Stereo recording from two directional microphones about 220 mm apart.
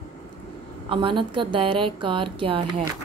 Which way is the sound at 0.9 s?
20° right (ahead or behind).